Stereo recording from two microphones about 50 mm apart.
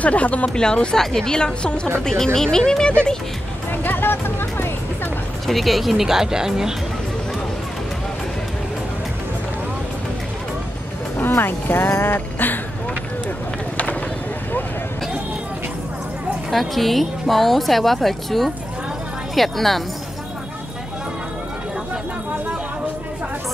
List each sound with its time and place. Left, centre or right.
0.0 s speech: left
0.5 s a woman's voice: centre
3.7 s speech: left
5.5 s speech: centre
11.1 s speech: left
16.4 s speech: centre